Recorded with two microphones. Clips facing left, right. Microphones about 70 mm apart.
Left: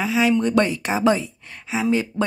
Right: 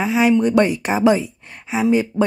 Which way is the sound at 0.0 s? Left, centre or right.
Right.